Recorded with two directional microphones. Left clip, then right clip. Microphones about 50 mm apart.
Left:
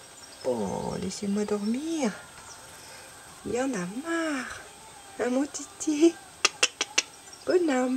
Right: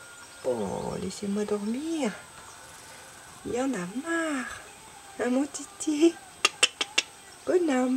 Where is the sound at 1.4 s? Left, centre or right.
Centre.